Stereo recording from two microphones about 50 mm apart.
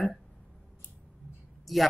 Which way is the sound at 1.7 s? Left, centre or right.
Centre.